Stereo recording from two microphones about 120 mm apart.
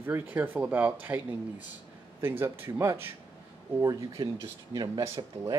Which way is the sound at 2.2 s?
20° right (ahead or behind).